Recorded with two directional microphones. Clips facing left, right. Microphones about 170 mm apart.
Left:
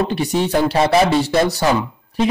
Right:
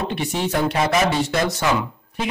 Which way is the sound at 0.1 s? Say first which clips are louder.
Left 5 dB; 35° left (ahead or behind).